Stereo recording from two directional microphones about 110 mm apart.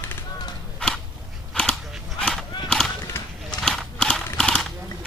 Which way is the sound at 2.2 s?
10° left (ahead or behind).